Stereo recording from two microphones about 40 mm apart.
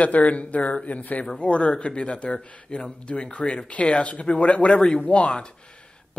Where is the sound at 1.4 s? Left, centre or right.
Left.